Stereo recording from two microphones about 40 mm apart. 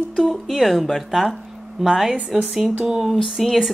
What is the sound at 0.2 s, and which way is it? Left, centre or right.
Speech, centre.